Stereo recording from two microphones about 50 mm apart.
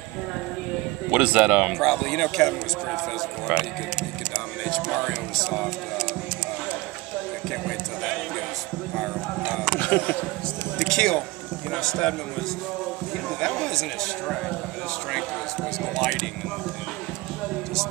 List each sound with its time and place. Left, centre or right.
1.1 s speech: right
1.8 s speech: centre
3.4 s speech: right
4.9 s speech: centre
9.8 s speech: left
10.9 s speech: centre
13.4 s speech: centre